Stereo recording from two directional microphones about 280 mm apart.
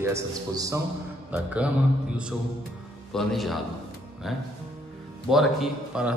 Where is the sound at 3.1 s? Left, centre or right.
Centre.